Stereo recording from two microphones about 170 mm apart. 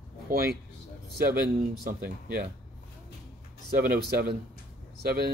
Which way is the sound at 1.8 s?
60° right (ahead or behind).